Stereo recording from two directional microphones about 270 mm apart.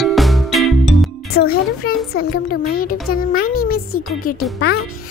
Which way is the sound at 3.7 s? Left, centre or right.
Left.